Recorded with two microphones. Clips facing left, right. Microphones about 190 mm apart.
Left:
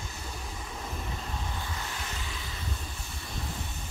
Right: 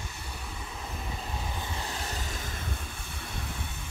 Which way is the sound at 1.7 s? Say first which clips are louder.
Right 2 dB; 40° right (ahead or behind).